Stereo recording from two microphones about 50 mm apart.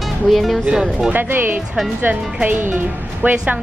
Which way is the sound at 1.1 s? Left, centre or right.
Right.